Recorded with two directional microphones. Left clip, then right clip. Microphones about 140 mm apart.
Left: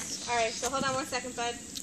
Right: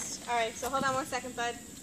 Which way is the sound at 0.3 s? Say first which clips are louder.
Left 1 dB; centre (ahead or behind).